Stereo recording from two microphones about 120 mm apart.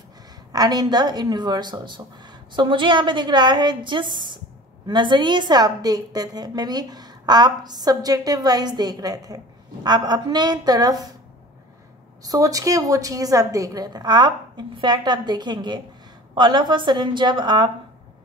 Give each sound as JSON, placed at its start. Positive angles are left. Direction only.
{"t": 0.5, "sound": "a woman's voice", "side_deg": -35}
{"t": 12.2, "sound": "a woman's voice", "side_deg": -30}